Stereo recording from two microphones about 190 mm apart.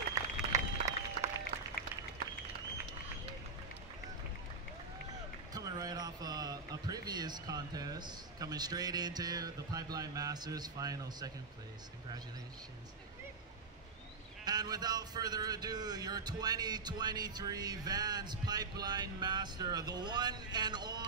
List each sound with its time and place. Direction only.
0.1 s applause: 15° right (ahead or behind)
5.5 s a man's voice: 20° right (ahead or behind)
14.4 s speech: 20° right (ahead or behind)